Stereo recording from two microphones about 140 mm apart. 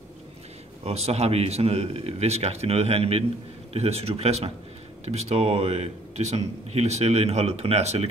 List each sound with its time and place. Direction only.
0.8 s speech: 50° right (ahead or behind)